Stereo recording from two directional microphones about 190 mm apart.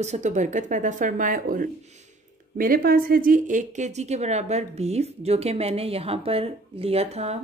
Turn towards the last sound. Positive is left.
turn(degrees=-35)  # may be behind; listen again after turning